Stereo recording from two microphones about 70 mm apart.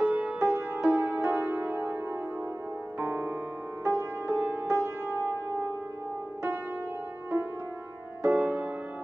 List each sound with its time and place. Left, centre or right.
0.0 s music: centre
0.4 s music: right
3.0 s music: right
8.2 s music: right